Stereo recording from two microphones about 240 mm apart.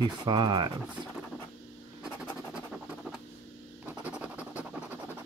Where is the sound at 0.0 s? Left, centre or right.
Centre.